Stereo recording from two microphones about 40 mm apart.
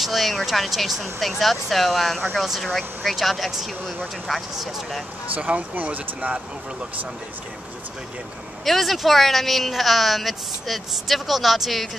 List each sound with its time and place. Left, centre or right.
0.0 s speech: centre
5.3 s speech: right
8.6 s speech: centre